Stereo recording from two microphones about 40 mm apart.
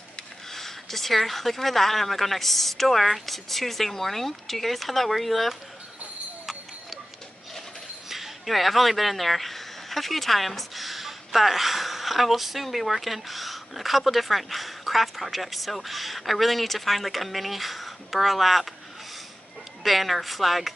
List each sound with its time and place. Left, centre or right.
0.5 s speech: centre
8.1 s speech: centre
19.8 s speech: centre